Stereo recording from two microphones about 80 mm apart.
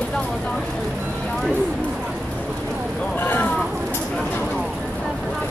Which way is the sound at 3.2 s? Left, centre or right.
Left.